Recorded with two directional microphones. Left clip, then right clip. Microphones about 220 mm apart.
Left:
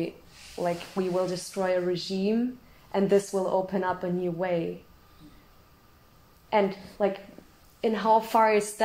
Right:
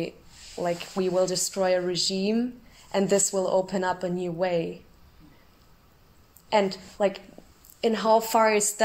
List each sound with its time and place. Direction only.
0.6 s speech: 40° right (ahead or behind)
6.5 s speech: 40° right (ahead or behind)